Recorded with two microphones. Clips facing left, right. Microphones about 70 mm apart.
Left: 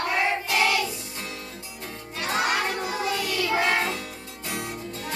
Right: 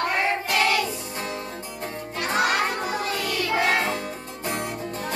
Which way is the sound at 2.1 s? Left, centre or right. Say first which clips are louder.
Right 2 dB; right.